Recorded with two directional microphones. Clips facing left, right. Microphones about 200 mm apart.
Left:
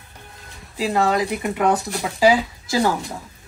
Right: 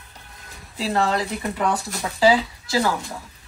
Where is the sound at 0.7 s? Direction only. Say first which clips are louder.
Left 3 dB; 15° left (ahead or behind).